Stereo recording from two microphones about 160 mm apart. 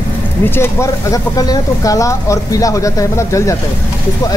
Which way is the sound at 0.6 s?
20° left (ahead or behind).